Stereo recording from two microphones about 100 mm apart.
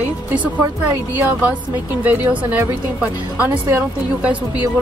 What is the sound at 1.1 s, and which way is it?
A woman's voice, 15° right (ahead or behind).